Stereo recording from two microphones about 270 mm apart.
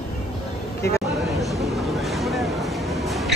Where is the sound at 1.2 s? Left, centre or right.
Centre.